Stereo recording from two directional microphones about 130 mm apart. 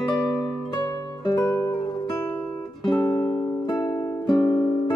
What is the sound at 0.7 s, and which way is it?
Music, 30° left (ahead or behind).